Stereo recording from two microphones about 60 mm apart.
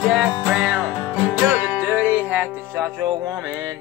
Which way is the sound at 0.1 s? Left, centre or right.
Centre.